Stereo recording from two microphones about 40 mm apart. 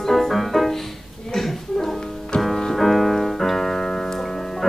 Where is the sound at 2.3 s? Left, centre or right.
Left.